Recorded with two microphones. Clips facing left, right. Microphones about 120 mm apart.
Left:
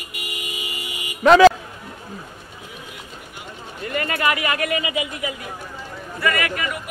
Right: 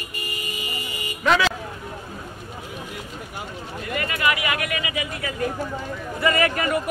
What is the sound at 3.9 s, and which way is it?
Speech, 40° left (ahead or behind).